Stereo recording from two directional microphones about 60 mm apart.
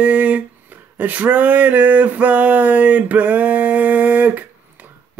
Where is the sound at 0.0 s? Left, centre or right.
Right.